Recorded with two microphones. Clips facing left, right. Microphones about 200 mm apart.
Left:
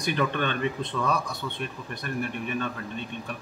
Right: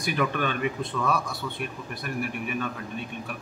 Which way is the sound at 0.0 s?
10° right (ahead or behind).